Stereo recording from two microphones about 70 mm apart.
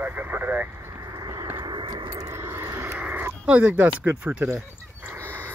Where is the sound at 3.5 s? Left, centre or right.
Right.